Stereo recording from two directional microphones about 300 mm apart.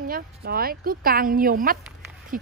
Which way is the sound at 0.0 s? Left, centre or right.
Right.